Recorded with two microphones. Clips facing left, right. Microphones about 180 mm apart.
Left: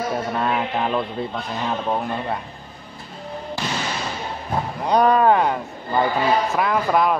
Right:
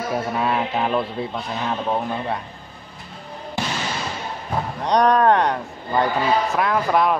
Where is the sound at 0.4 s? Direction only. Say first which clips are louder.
Right 1 dB; 5° right (ahead or behind).